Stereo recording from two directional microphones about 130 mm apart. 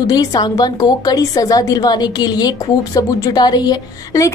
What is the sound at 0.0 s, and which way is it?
A woman's voice, 30° left (ahead or behind).